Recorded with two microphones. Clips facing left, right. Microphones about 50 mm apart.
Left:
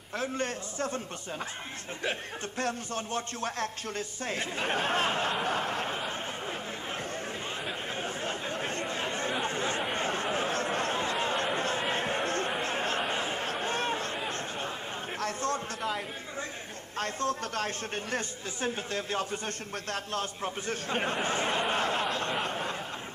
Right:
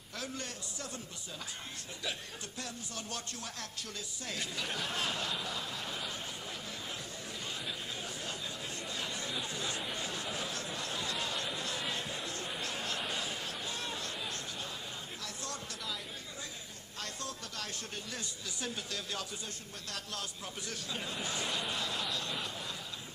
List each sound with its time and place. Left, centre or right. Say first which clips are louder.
0.2 s speech: left 9 dB; left
2.0 s speech: left 8 dB; left
7.6 s chatter: left 7 dB; left
12.2 s chatter: left 10 dB; left
12.6 s chatter: left 8 dB; left
15.1 s a sound: left 16 dB; left
17.0 s a man's voice: left 12 dB; left